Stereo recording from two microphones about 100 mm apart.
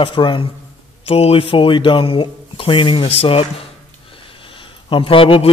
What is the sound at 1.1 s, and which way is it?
Speech, 75° left (ahead or behind).